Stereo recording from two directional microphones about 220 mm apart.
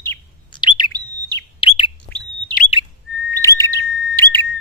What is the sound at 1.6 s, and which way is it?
Chirp, 25° left (ahead or behind).